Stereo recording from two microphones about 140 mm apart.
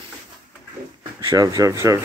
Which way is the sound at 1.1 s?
25° right (ahead or behind).